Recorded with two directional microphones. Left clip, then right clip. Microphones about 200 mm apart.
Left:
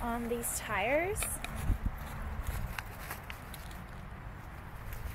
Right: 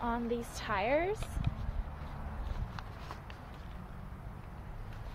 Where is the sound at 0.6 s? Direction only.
15° right (ahead or behind).